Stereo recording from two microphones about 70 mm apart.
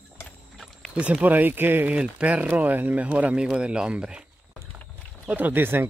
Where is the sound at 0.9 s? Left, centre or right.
Centre.